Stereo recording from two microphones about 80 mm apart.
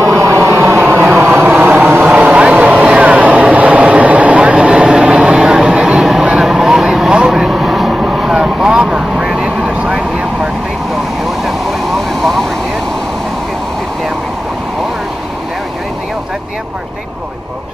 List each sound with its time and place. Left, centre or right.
0.0 s vehicle: right
0.7 s vehicle: right
2.0 s vehicle: centre
12.2 s vehicle: centre